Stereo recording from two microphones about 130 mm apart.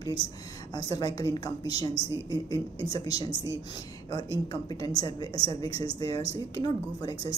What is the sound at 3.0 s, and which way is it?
Speech, 55° right (ahead or behind).